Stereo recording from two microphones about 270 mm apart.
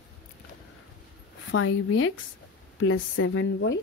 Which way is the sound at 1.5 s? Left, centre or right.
Left.